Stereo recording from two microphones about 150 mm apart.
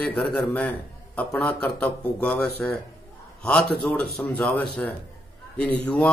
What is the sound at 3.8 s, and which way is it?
Speech, 10° left (ahead or behind).